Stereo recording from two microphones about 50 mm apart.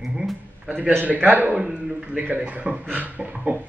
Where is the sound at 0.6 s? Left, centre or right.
Right.